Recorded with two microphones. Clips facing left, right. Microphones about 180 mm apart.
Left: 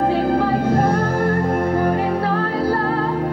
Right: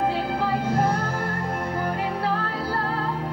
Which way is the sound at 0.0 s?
50° left (ahead or behind).